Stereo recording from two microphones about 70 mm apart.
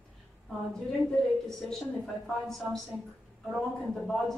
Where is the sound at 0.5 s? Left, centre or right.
Centre.